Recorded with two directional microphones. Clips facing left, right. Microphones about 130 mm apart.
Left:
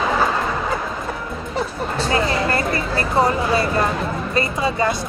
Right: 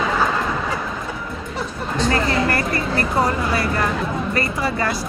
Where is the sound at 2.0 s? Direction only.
20° left (ahead or behind).